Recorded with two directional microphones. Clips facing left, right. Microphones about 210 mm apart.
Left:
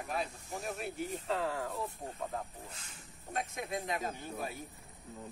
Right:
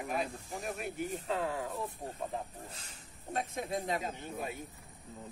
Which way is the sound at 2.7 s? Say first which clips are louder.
Right 1 dB; 35° right (ahead or behind).